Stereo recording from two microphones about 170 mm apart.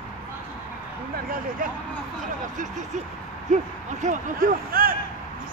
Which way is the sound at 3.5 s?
45° right (ahead or behind).